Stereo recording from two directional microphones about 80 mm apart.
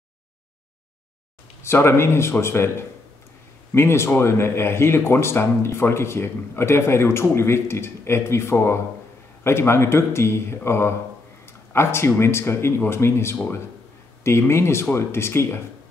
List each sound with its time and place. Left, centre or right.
1.6 s speech: left
3.7 s speech: left